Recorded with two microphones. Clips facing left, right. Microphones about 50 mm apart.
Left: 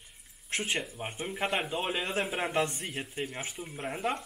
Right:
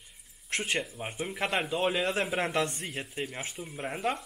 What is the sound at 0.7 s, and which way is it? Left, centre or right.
Speech, centre.